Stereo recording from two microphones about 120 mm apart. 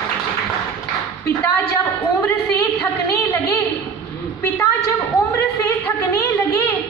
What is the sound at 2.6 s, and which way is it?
A woman's voice, 20° left (ahead or behind).